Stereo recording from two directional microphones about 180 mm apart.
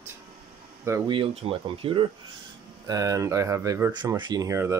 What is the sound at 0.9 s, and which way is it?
Speech, 25° right (ahead or behind).